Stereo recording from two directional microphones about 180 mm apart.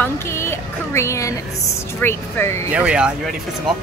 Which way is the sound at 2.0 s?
15° left (ahead or behind).